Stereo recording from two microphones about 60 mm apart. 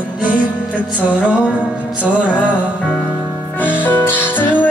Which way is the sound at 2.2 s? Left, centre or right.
Left.